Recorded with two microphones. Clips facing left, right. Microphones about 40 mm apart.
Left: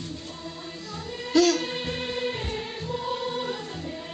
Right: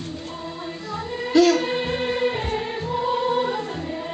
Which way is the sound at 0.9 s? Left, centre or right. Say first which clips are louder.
Right 4 dB; right.